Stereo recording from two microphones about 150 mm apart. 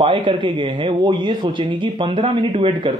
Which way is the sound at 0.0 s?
35° right (ahead or behind).